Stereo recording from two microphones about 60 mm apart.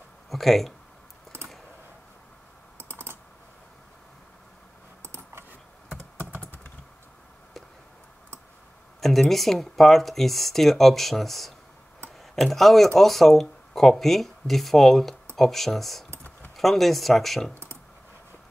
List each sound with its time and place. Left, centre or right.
0.3 s speech: centre
2.8 s typing: right
5.0 s typing: right
6.4 s computer keyboard: left
9.0 s speech: centre